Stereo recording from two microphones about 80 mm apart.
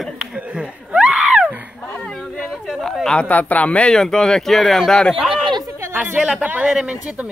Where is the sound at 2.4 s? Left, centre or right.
Centre.